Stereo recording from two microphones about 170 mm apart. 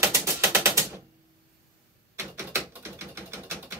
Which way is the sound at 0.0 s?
15° right (ahead or behind).